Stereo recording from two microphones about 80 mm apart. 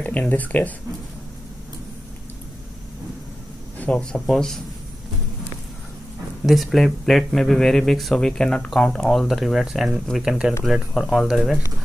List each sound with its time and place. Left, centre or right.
0.0 s speech: left
3.7 s speech: centre
6.4 s speech: centre